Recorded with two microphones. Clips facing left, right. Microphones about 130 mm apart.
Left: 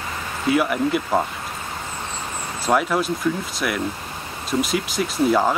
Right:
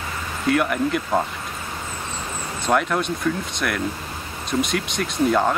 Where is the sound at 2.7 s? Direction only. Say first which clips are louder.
Left 1 dB; 5° left (ahead or behind).